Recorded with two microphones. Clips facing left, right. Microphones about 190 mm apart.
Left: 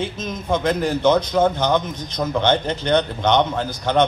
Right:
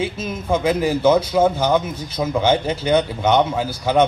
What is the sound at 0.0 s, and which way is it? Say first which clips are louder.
A man's voice: right 2 dB; 10° right (ahead or behind).